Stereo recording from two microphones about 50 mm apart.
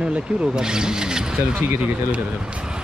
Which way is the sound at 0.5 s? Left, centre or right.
Centre.